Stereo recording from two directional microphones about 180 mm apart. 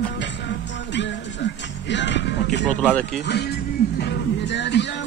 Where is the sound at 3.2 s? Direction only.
70° left (ahead or behind).